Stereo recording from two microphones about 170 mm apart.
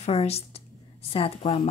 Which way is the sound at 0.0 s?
35° left (ahead or behind).